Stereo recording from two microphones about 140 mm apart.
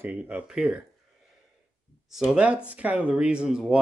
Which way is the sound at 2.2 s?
5° right (ahead or behind).